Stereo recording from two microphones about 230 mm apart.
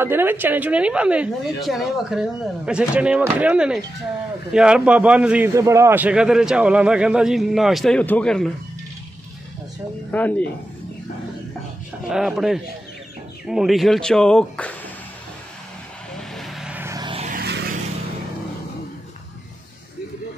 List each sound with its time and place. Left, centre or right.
0.0 s a man's voice: centre
10.1 s speech: centre
12.1 s a man's voice: centre
16.2 s vehicle: centre; by 17.3 s right
17.3 s vehicle: right